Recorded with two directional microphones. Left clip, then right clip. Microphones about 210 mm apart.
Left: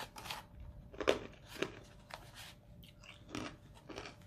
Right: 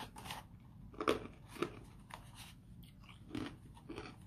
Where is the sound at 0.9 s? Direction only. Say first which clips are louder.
Left 2 dB; 5° left (ahead or behind).